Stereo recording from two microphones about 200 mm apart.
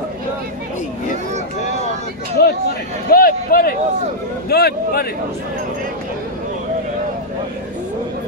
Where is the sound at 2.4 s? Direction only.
50° left (ahead or behind).